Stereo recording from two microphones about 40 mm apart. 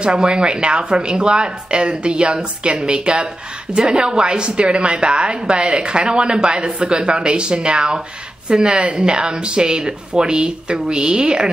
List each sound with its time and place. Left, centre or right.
0.0 s a woman's voice: right